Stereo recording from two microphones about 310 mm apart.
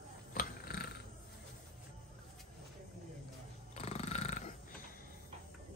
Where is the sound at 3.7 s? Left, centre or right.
Left.